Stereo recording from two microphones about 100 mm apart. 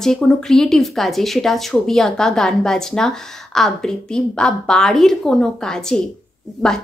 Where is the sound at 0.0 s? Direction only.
5° left (ahead or behind).